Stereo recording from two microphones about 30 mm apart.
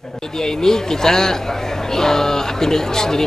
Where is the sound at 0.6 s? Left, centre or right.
Centre.